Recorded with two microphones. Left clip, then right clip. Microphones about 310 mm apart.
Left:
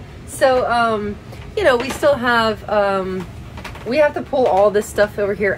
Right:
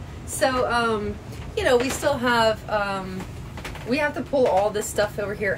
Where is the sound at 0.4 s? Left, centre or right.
Centre.